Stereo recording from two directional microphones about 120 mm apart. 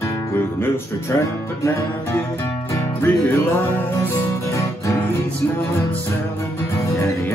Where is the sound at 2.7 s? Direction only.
15° left (ahead or behind).